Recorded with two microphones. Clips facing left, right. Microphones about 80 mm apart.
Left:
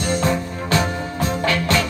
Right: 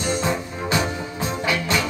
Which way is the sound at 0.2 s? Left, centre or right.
Centre.